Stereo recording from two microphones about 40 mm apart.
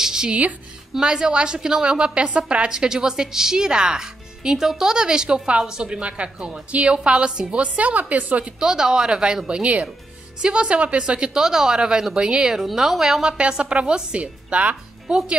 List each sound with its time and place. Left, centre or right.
0.0 s music: centre
0.3 s a woman's voice: right
0.9 s a woman's voice: centre
2.7 s a woman's voice: centre; by 8.5 s right
8.5 s a woman's voice: centre
13.2 s a woman's voice: right
15.0 s a woman's voice: centre